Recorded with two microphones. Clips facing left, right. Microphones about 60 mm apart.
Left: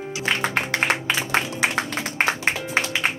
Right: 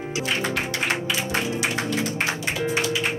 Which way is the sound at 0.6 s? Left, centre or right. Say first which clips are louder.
Left 3 dB; left.